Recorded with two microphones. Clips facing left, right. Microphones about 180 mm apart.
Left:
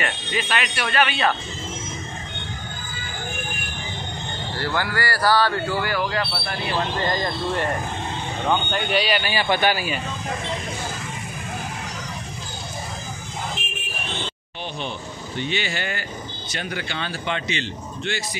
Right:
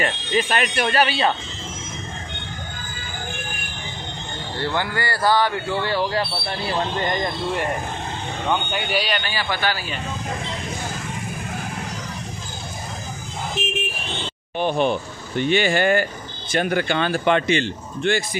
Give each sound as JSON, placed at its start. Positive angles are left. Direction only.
{"t": 0.0, "sound": "speech", "side_deg": -40}
{"t": 0.8, "sound": "a man's voice", "side_deg": -35}
{"t": 4.6, "sound": "speech", "side_deg": -20}
{"t": 8.5, "sound": "a man's voice", "side_deg": 0}
{"t": 9.3, "sound": "a man's voice", "side_deg": 20}
{"t": 14.6, "sound": "speech", "side_deg": -55}